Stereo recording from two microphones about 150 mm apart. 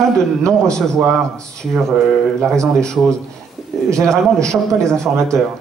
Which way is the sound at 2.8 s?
5° left (ahead or behind).